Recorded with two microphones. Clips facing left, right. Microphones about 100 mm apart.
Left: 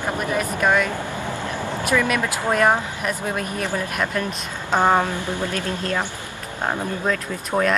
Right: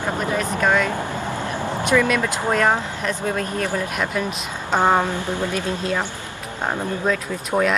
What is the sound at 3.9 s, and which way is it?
Speech, centre (ahead or behind).